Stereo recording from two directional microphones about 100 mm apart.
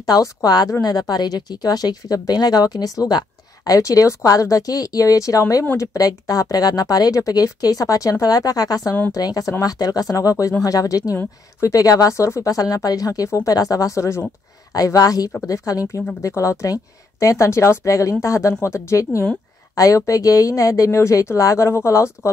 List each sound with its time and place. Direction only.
0.0 s speech: 35° left (ahead or behind)